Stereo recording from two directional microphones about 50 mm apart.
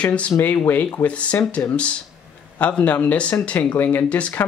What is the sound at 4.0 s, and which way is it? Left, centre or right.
Speech, left.